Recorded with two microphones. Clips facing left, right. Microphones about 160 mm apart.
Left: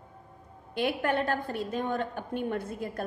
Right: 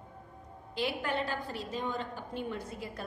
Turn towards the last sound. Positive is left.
turn(degrees=55)  # may be behind; listen again after turning